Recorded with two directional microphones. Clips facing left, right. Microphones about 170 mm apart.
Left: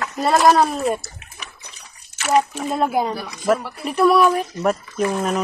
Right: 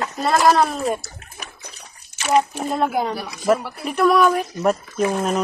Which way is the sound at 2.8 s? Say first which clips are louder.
Left 1 dB; 5° left (ahead or behind).